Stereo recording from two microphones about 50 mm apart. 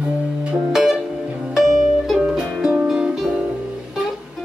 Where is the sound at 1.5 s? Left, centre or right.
Centre.